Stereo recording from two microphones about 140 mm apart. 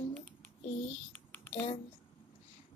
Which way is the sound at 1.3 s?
10° left (ahead or behind).